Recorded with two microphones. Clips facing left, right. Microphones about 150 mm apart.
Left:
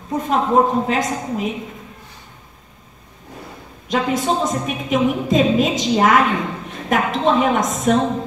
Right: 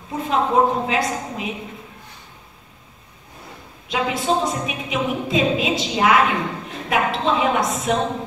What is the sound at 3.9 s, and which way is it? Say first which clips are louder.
A woman's voice: left 2 dB; 45° left (ahead or behind).